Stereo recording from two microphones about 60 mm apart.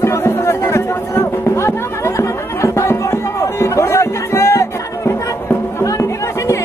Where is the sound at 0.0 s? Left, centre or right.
Left.